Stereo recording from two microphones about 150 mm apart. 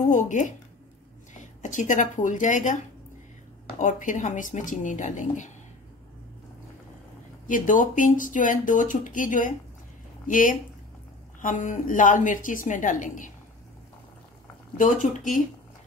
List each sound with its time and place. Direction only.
0.1 s speech: 55° left (ahead or behind)
7.4 s speech: 60° left (ahead or behind)
14.8 s speech: 60° left (ahead or behind)